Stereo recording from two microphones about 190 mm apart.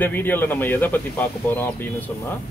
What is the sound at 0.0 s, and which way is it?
Speech, 10° left (ahead or behind).